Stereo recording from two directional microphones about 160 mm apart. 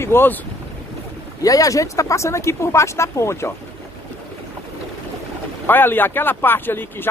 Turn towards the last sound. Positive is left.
turn(degrees=15)  # may be behind; listen again after turning